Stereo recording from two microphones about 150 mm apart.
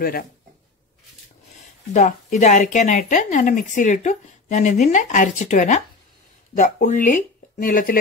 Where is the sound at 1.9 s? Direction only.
50° left (ahead or behind).